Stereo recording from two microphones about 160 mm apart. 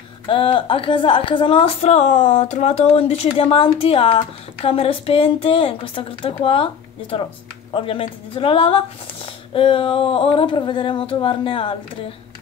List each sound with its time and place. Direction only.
0.3 s a woman's voice: 30° left (ahead or behind)